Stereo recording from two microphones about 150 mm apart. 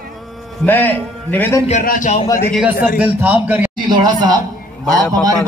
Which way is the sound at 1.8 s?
60° left (ahead or behind).